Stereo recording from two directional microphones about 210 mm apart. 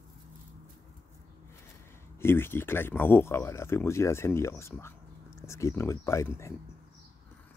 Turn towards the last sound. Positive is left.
turn(degrees=15)  # may be behind; listen again after turning